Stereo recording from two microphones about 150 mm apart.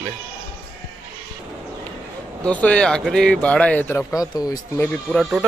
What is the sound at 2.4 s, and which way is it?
Speech, 10° left (ahead or behind).